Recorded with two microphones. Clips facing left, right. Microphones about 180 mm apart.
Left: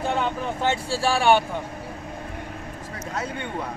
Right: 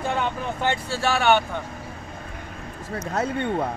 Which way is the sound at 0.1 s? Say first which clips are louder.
Left 1 dB; centre (ahead or behind).